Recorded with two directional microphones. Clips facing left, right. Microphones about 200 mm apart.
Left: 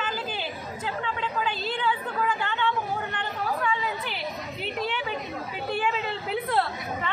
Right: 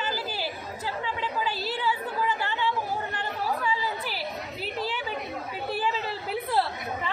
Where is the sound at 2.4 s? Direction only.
5° right (ahead or behind).